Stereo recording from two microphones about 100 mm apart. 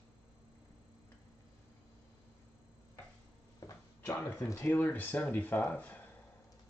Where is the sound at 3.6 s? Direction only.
35° left (ahead or behind).